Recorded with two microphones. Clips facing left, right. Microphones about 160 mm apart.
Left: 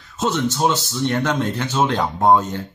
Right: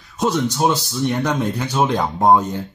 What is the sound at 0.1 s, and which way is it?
Speech, 15° right (ahead or behind).